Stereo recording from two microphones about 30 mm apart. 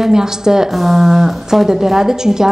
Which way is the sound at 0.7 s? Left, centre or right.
Centre.